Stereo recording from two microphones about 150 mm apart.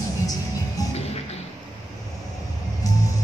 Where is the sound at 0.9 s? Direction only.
45° left (ahead or behind).